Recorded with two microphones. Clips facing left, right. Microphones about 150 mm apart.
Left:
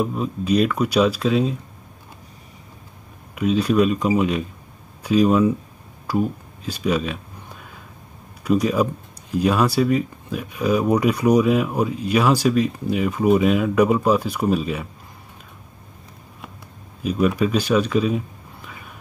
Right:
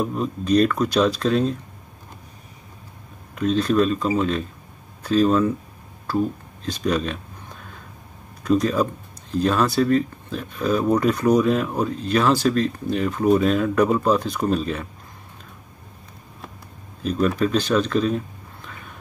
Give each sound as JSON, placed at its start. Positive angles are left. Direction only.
{"t": 0.0, "sound": "speech", "side_deg": 5}
{"t": 3.3, "sound": "speech", "side_deg": 10}
{"t": 8.5, "sound": "speech", "side_deg": 10}
{"t": 17.0, "sound": "speech", "side_deg": 10}